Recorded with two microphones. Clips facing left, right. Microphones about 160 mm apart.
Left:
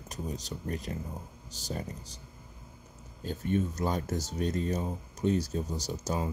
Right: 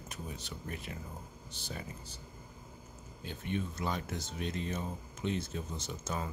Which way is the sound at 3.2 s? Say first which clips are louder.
Left 7 dB; 40° left (ahead or behind).